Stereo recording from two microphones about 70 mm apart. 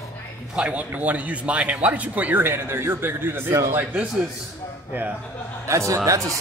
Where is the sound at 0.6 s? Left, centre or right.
Centre.